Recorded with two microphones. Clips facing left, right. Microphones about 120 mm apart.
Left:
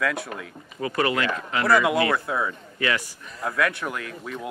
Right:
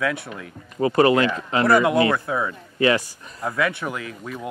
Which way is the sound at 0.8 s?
30° right (ahead or behind).